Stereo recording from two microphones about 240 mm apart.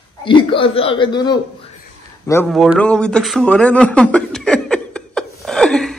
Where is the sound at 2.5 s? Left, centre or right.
Centre.